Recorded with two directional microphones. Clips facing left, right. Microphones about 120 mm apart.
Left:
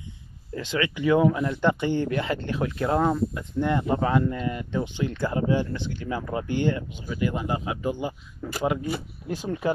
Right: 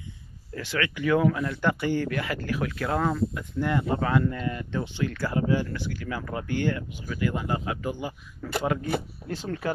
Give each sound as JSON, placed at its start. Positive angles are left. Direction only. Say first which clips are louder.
{"t": 0.6, "sound": "speech", "louder": "left 2 dB", "side_deg": 20}